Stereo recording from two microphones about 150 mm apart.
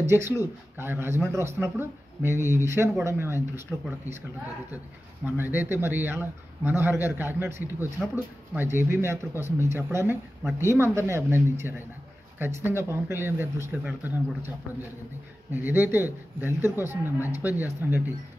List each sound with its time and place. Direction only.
0.0 s a man's voice: 15° right (ahead or behind)
5.2 s a man's voice: 15° right (ahead or behind)